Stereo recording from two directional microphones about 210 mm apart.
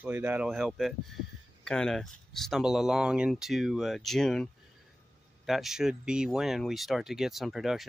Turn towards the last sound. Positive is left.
turn(degrees=0)  # may be behind; listen again after turning